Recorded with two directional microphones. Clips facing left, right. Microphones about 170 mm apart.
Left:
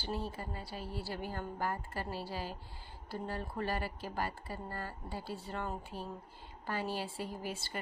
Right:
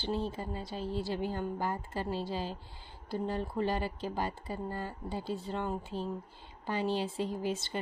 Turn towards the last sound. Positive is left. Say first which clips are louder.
# right 7 dB
turn(degrees=-20)  # may be behind; listen again after turning